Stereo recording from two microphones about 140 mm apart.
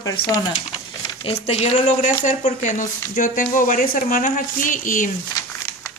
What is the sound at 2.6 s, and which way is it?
Speech, 65° left (ahead or behind).